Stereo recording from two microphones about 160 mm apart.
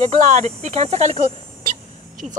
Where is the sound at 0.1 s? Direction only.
45° right (ahead or behind).